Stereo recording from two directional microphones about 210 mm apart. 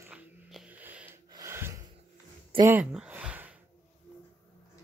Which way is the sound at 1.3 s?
15° right (ahead or behind).